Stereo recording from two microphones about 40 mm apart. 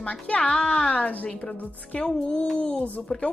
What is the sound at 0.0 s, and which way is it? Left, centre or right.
Speech, left.